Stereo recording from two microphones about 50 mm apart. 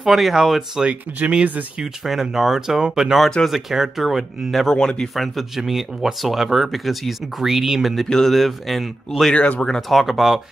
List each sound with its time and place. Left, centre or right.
0.0 s speech: centre
0.8 s speech: right
1.8 s speech: centre
4.6 s speech: centre
5.1 s speech: centre
7.9 s speech: centre
9.3 s speech: left
9.8 s speech: centre